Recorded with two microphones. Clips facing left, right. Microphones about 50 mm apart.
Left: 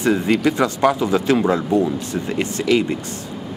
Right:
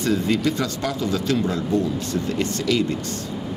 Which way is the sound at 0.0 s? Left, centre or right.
Centre.